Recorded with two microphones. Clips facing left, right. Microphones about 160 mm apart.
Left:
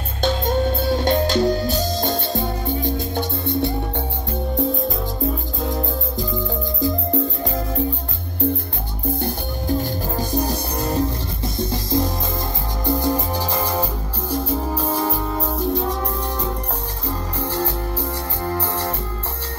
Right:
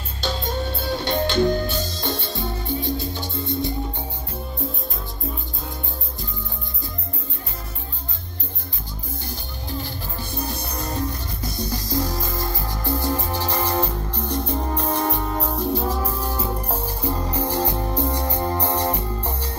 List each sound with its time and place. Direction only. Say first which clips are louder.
0.2 s music: left 7 dB; 45° left (ahead or behind)
5.6 s music: left 10 dB; 90° left
9.2 s music: left 9 dB; 45° left (ahead or behind); by 16.4 s 5° right (ahead or behind)
17.5 s music: even; 15° right (ahead or behind)